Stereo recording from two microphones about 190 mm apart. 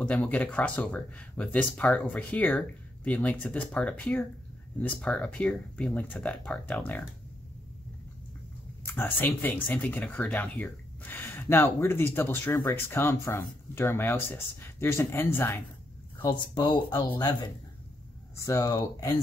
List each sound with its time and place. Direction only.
0.0 s speech: 5° left (ahead or behind)
8.8 s speech: 10° left (ahead or behind)
16.2 s speech: 25° left (ahead or behind)